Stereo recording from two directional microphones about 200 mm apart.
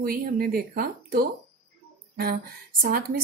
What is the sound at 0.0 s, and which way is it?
A woman's voice, 50° right (ahead or behind).